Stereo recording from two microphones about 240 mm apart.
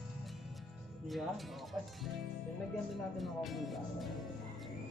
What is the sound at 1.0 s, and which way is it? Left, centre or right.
Speech, centre.